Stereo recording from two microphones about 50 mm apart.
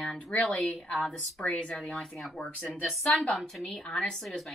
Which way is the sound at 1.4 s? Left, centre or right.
Left.